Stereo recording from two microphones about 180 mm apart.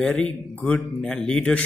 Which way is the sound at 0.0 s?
5° left (ahead or behind).